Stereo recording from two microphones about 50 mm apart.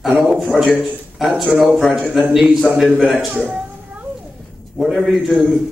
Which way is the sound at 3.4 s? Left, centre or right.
Right.